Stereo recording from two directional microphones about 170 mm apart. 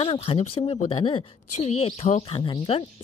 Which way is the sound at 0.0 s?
30° left (ahead or behind).